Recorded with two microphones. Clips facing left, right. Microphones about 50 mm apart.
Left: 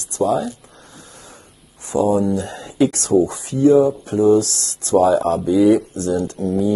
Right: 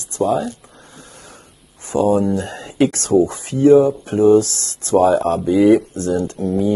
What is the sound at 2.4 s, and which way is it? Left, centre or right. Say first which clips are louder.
Speech: right 1 dB; right.